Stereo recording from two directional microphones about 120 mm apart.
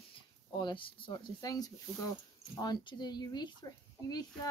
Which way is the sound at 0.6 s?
40° left (ahead or behind).